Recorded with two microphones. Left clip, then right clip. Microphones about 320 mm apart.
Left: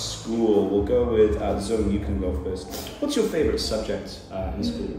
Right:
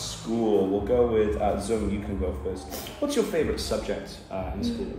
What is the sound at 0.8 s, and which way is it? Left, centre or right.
Speech, centre.